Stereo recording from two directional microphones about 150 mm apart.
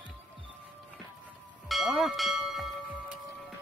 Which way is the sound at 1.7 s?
Centre (ahead or behind).